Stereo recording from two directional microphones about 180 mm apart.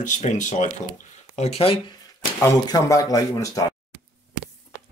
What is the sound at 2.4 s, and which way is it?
Speech, 20° left (ahead or behind).